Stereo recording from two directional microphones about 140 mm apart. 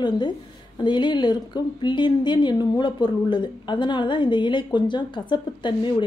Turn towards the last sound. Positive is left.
turn(degrees=35)  # may be behind; listen again after turning